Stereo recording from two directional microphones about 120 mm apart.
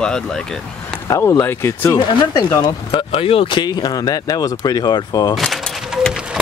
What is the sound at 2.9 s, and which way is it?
Speech, 50° left (ahead or behind).